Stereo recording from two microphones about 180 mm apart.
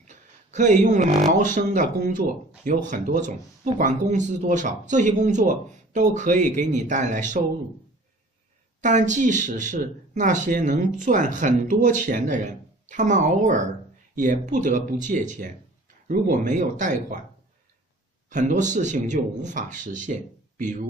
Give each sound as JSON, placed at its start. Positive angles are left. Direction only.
{"t": 0.0, "sound": "speech", "side_deg": -40}
{"t": 8.8, "sound": "speech", "side_deg": -45}
{"t": 18.3, "sound": "speech", "side_deg": -45}